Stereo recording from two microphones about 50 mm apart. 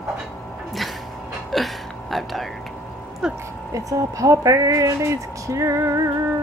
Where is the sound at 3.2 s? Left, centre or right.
Centre.